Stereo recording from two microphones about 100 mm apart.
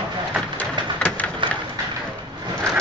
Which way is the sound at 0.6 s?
15° left (ahead or behind).